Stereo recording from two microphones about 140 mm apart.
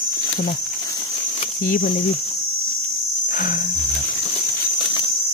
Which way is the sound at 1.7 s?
80° left.